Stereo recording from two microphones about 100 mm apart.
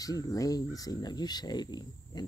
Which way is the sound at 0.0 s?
35° left (ahead or behind).